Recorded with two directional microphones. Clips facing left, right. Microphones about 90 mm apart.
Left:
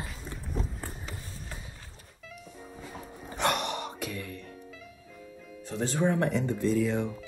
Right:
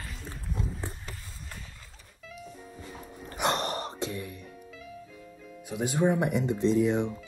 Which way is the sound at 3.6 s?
35° right (ahead or behind).